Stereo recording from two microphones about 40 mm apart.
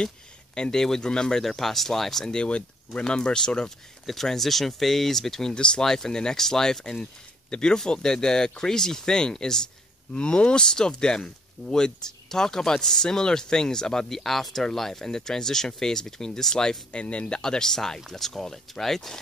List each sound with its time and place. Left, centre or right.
0.6 s speech: centre
1.6 s speech: centre
2.3 s speech: left
4.0 s speech: centre
5.5 s speech: left
17.4 s speech: centre